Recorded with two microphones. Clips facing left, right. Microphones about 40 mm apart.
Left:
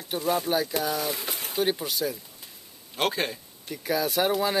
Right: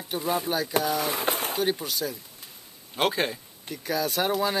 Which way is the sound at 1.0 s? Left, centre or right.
Right.